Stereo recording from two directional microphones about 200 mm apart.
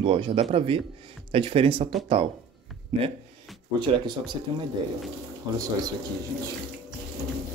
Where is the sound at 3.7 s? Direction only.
25° right (ahead or behind).